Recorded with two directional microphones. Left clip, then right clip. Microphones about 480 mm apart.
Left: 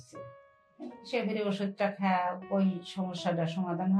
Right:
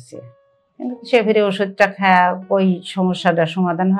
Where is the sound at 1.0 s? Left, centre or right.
Right.